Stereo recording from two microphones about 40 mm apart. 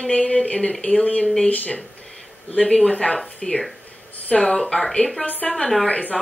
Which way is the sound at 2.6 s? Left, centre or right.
Centre.